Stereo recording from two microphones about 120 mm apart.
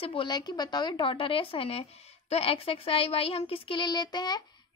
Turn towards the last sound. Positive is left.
turn(degrees=35)  # may be behind; listen again after turning